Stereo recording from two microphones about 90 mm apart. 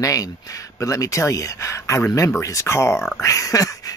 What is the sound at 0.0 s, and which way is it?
Speech, 40° left (ahead or behind).